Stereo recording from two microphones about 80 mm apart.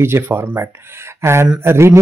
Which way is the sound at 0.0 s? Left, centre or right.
Right.